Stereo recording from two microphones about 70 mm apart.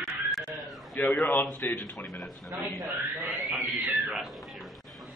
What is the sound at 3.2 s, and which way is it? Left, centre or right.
Speech, right.